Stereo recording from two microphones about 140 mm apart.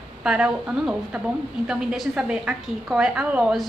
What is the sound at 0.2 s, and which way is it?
A woman's voice, 5° right (ahead or behind).